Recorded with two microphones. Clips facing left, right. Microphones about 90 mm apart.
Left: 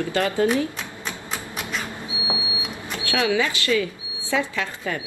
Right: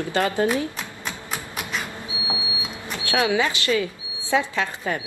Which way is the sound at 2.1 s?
20° left (ahead or behind).